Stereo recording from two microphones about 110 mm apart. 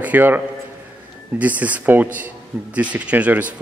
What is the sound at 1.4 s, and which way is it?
Speech, 15° right (ahead or behind).